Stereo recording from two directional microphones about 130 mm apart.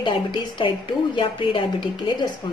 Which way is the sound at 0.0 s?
40° left (ahead or behind).